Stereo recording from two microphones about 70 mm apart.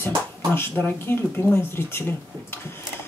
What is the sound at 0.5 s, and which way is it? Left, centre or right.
Speech, left.